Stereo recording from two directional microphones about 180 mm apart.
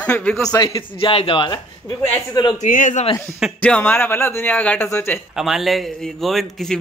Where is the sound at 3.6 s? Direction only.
10° left (ahead or behind).